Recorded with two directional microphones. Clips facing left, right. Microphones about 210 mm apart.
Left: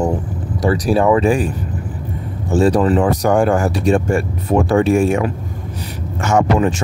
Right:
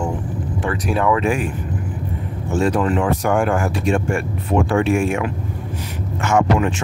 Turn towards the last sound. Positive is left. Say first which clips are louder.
# left 2 dB
turn(degrees=40)  # may be behind; listen again after turning